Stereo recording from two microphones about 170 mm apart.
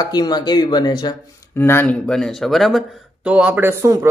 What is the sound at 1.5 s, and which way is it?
Speech, 15° left (ahead or behind).